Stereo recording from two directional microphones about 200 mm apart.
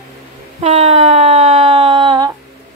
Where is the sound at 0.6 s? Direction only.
35° right (ahead or behind).